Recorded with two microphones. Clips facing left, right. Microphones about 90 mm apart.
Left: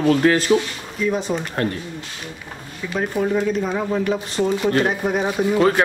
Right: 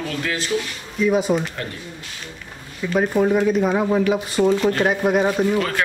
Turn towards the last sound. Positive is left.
turn(degrees=25)  # may be behind; listen again after turning